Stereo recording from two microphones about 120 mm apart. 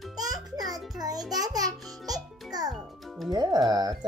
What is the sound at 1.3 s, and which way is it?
Music, 30° right (ahead or behind).